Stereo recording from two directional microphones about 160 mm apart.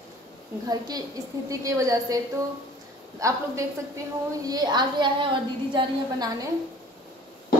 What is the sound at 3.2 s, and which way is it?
A woman's voice, 20° right (ahead or behind).